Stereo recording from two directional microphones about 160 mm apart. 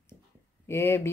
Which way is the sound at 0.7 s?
15° left (ahead or behind).